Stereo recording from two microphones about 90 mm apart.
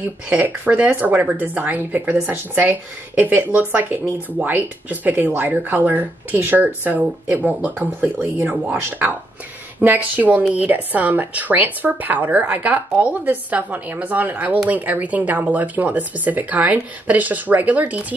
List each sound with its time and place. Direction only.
0.3 s speech: 15° right (ahead or behind)